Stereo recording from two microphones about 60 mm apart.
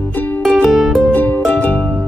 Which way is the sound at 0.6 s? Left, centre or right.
Centre.